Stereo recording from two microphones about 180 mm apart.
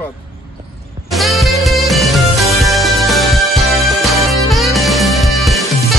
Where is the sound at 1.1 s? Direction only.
Centre (ahead or behind).